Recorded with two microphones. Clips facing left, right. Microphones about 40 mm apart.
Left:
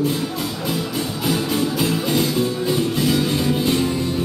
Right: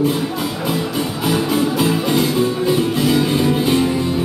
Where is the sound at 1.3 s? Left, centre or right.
Centre.